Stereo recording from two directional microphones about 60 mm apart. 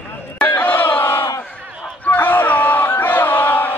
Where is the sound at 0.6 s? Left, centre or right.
Left.